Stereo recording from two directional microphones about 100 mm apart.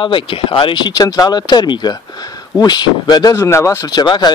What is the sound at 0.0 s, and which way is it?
Speech, 55° left (ahead or behind).